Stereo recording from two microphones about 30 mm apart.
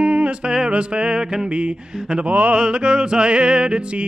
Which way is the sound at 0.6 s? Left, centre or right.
Right.